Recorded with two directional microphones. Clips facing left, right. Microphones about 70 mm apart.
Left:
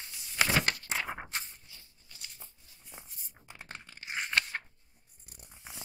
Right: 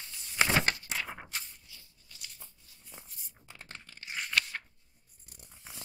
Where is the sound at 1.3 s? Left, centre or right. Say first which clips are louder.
Left 2 dB; left.